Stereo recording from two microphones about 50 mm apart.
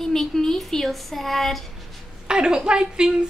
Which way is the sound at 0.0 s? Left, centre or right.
Centre.